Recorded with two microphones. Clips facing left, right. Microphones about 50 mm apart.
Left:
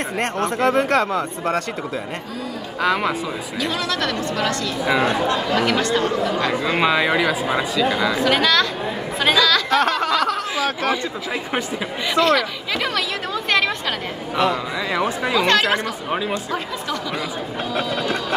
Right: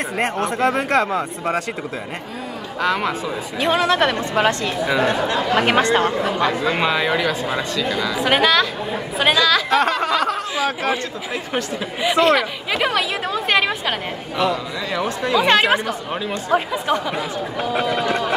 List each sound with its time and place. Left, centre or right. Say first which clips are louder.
0.1 s speech: right 1 dB; centre
2.8 s speech: left 1 dB; centre
3.5 s a woman's voice: right 7 dB; right
6.6 s speech: left 1 dB; centre
8.2 s speech: right 3 dB; centre
12.0 s speech: right 2 dB; centre
14.3 s speech: left 1 dB; centre
15.3 s speech: right 3 dB; centre
16.2 s speech: even; centre
16.5 s a woman's voice: right 6 dB; right